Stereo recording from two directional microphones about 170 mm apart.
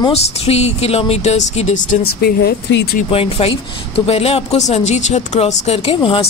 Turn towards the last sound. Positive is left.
turn(degrees=30)  # may be behind; listen again after turning